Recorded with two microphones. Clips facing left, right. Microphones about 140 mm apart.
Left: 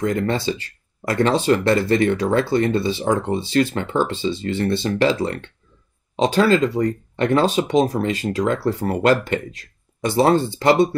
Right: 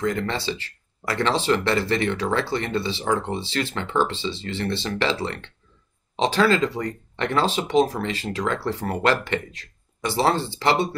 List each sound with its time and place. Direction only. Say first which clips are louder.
0.0 s speech: left 4 dB; 45° left (ahead or behind)